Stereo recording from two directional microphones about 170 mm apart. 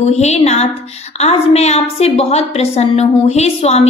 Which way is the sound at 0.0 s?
40° left (ahead or behind).